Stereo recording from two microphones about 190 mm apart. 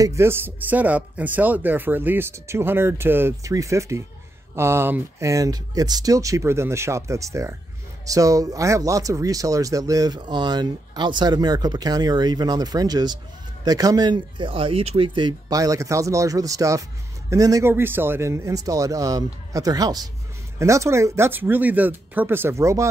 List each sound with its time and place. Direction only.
0.0 s speech: 15° right (ahead or behind)